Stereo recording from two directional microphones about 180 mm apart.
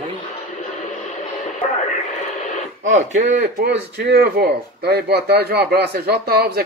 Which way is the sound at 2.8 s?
40° right (ahead or behind).